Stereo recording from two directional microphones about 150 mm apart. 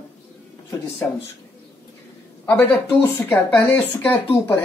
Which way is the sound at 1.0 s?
15° left (ahead or behind).